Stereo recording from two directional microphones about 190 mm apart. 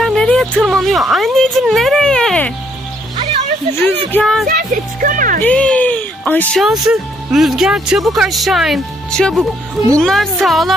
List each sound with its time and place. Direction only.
0.0 s speech: 5° left (ahead or behind)
3.8 s speech: 5° left (ahead or behind)
4.5 s speech: 45° right (ahead or behind)
5.4 s speech: 5° left (ahead or behind)